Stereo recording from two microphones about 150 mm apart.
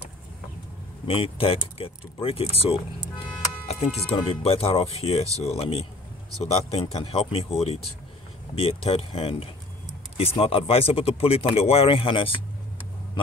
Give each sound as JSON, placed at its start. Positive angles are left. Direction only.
{"t": 1.0, "sound": "speech", "side_deg": 40}